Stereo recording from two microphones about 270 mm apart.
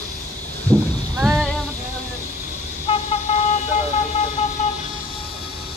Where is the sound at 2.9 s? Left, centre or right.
Left.